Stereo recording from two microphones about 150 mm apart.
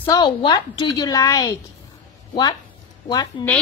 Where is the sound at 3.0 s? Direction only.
25° left (ahead or behind).